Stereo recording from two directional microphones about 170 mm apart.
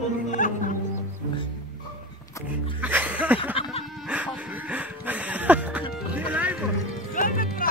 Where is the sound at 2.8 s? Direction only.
10° right (ahead or behind).